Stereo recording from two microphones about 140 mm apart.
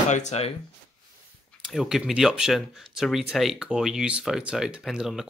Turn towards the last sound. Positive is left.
turn(degrees=0)  # may be behind; listen again after turning